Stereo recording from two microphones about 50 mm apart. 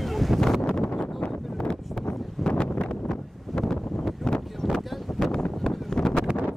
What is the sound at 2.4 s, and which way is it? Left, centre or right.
Wind noise, centre.